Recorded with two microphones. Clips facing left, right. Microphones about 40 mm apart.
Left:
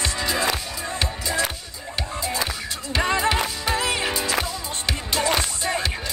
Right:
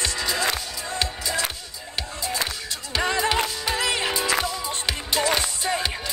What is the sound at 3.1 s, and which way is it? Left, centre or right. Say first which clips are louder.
Music: left 1 dB; centre.